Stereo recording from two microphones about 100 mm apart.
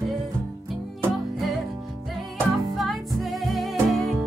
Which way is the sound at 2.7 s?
Centre (ahead or behind).